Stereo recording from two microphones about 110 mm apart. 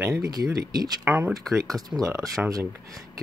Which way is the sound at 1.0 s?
15° right (ahead or behind).